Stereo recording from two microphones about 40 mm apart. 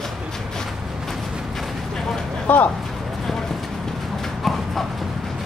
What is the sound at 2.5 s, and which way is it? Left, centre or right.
Speech, left.